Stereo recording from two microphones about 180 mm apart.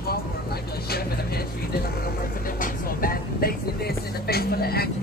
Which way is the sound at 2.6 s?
55° left (ahead or behind).